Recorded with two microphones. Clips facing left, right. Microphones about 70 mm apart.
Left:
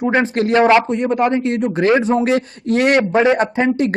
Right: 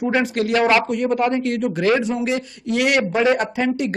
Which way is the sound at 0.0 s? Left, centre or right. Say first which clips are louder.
Left 3 dB; left.